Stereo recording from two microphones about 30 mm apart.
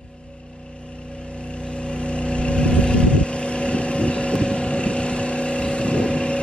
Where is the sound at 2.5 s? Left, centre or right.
Left.